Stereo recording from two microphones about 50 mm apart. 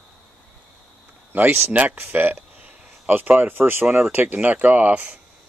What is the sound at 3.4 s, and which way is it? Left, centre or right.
Speech, right.